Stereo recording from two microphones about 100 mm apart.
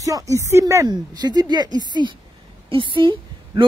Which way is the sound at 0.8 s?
45° right (ahead or behind).